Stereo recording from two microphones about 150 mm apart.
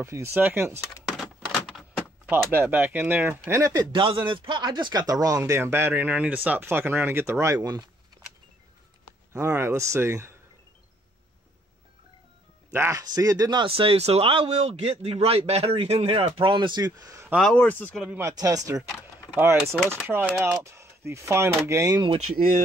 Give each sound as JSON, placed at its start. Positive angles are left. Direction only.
{"t": 0.0, "sound": "speech", "side_deg": -20}
{"t": 1.0, "sound": "a sound", "side_deg": 0}
{"t": 2.3, "sound": "speech", "side_deg": -15}
{"t": 3.9, "sound": "speech", "side_deg": -30}
{"t": 9.3, "sound": "speech", "side_deg": -15}
{"t": 12.7, "sound": "speech", "side_deg": -20}
{"t": 17.4, "sound": "speech", "side_deg": 5}
{"t": 18.0, "sound": "speech", "side_deg": -15}
{"t": 18.4, "sound": "speech", "side_deg": -25}
{"t": 20.0, "sound": "speech", "side_deg": -10}
{"t": 22.3, "sound": "speech", "side_deg": -70}